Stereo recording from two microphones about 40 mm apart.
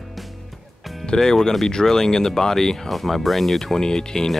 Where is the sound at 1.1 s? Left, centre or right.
Centre.